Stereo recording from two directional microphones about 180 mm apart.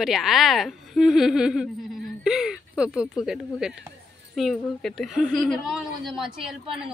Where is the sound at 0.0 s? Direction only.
Centre (ahead or behind).